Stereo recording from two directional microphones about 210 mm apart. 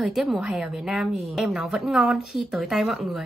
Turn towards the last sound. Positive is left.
turn(degrees=0)  # may be behind; listen again after turning